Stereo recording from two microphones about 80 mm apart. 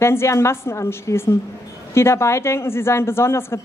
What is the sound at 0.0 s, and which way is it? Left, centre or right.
Speech, left.